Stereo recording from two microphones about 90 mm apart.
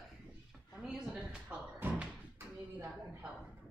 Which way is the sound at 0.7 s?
Centre (ahead or behind).